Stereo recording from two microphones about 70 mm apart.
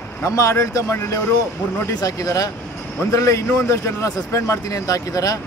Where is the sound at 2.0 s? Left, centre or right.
Left.